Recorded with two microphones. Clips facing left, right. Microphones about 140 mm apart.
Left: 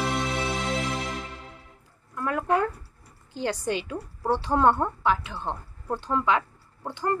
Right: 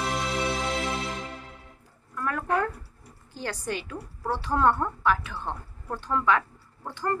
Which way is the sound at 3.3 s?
20° left (ahead or behind).